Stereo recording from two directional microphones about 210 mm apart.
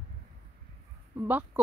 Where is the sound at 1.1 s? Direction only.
10° right (ahead or behind).